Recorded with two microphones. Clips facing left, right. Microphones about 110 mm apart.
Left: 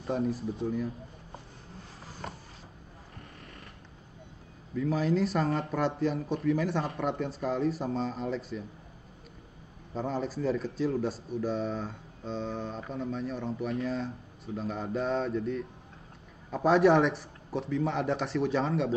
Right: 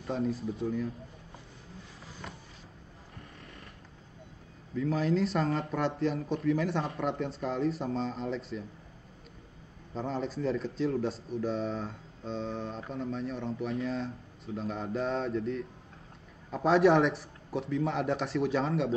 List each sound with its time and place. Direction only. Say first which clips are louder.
0.1 s speech: left 1 dB; 5° left (ahead or behind)
2.0 s a sound: left 4 dB; 40° left (ahead or behind)
4.7 s speech: left 1 dB; centre (ahead or behind)
9.9 s speech: left 1 dB; centre (ahead or behind)